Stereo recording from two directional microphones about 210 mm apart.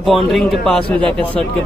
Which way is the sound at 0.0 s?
Centre (ahead or behind).